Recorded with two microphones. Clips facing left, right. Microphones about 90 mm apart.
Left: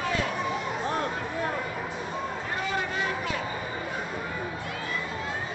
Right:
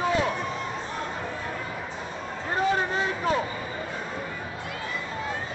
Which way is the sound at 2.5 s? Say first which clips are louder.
Right 7 dB; 35° right (ahead or behind).